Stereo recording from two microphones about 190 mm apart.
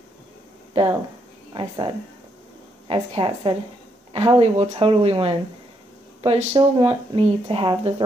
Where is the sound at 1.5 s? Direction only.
25° right (ahead or behind).